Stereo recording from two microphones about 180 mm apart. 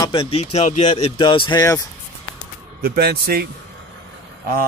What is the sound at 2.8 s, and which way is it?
Speech, 60° right (ahead or behind).